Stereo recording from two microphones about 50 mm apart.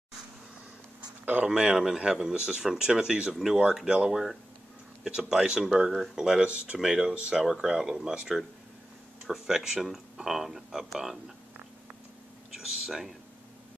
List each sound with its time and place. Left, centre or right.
1.2 s speech: right
1.5 s speech: centre
7.4 s speech: centre
12.5 s speech: centre